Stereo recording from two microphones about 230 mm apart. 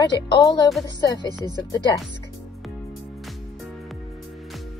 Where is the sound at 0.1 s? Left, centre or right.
Centre.